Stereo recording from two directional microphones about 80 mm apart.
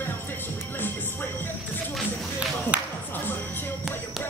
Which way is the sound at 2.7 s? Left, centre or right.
Centre.